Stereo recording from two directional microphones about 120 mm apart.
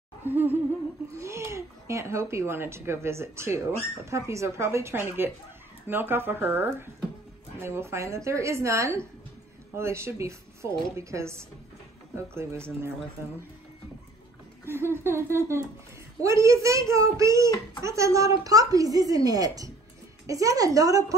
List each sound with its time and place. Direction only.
0.2 s laughter: 15° right (ahead or behind)
1.1 s a woman's voice: 25° right (ahead or behind)
14.7 s a woman's voice: 20° right (ahead or behind)